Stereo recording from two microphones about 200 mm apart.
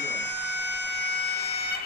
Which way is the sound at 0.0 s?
60° left (ahead or behind).